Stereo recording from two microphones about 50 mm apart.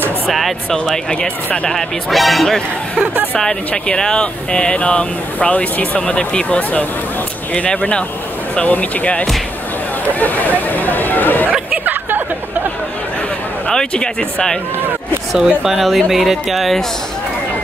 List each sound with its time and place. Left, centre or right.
0.3 s speech: centre
1.1 s speech: left
1.7 s speech: centre
3.3 s speech: centre; by 11.5 s left
11.7 s a sound: right
13.7 s speech: centre
15.3 s speech: centre